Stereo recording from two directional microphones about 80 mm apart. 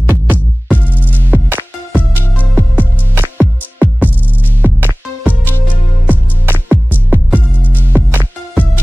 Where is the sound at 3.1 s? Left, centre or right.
Right.